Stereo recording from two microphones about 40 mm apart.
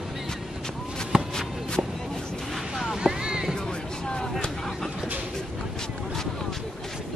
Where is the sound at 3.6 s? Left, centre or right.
Centre.